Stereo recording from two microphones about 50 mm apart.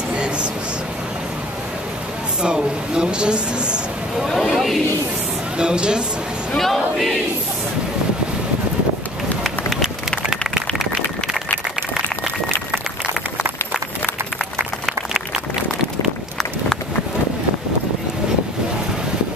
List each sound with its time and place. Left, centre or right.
0.1 s a sound: centre
2.4 s speech: centre
4.2 s speech: centre
5.6 s speech: centre
6.5 s speech: centre
14.9 s a sound: centre